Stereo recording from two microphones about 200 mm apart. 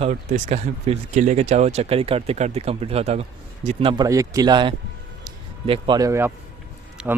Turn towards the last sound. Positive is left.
turn(degrees=-5)  # may be behind; listen again after turning